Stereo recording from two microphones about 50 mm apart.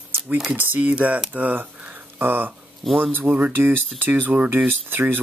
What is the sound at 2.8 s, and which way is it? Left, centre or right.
Speech, centre.